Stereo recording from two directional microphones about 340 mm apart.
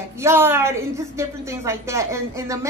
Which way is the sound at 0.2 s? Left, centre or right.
Centre.